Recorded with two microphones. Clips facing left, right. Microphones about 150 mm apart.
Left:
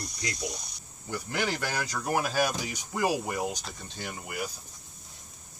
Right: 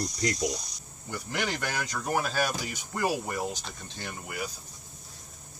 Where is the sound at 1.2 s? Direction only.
5° left (ahead or behind).